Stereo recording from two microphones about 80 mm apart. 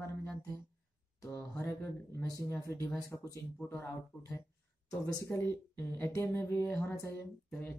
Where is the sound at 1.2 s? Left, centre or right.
Left.